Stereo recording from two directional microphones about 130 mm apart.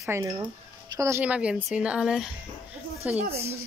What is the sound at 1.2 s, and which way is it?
Speech, 10° right (ahead or behind).